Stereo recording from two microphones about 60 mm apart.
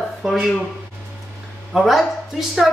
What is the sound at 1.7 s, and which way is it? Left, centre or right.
Speech, centre.